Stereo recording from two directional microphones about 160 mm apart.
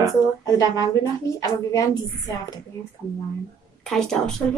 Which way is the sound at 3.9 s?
5° left (ahead or behind).